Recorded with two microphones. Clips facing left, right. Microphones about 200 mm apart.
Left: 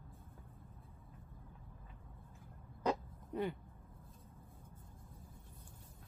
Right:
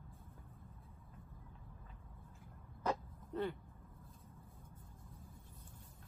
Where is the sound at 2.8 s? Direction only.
15° left (ahead or behind).